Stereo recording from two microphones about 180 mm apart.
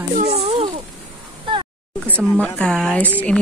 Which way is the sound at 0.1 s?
35° right (ahead or behind).